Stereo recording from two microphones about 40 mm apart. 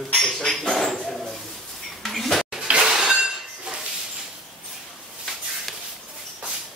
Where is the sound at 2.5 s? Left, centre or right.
Right.